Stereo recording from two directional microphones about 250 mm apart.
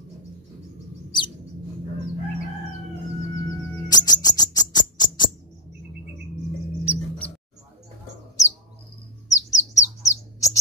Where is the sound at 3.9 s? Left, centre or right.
Centre.